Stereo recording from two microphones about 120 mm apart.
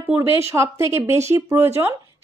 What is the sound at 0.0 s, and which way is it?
Speech, 20° right (ahead or behind).